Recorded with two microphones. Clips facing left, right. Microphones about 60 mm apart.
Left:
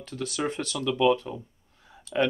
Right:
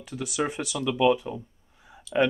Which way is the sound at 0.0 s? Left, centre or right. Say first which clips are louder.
Right 1 dB; centre.